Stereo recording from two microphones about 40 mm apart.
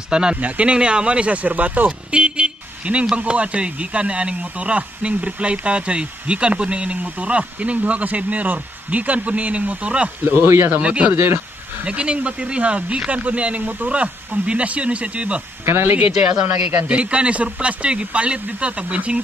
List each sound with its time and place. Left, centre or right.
0.1 s speech: right
0.4 s speech: right
0.7 s speech: right
1.9 s vehicle: right
3.2 s speech: right
10.2 s speech: right
10.8 s speech: right
11.1 s speech: right
11.8 s speech: right
15.6 s speech: right
16.8 s speech: right